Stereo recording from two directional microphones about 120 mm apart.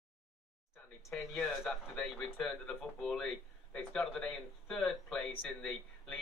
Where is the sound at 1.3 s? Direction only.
5° left (ahead or behind).